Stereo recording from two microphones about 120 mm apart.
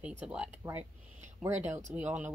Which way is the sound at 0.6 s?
20° right (ahead or behind).